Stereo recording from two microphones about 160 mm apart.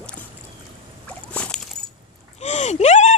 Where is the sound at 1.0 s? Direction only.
5° left (ahead or behind).